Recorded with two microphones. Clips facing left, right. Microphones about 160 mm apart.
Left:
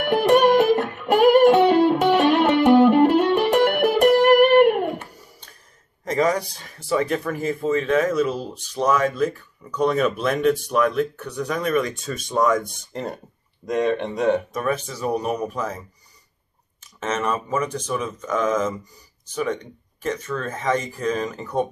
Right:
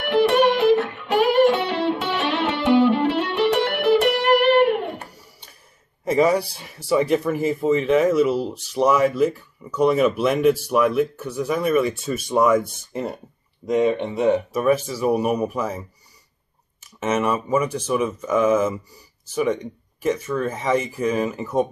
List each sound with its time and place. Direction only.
0.0 s music: 45° left (ahead or behind)
6.0 s a man's voice: 10° right (ahead or behind)
17.0 s speech: 10° right (ahead or behind)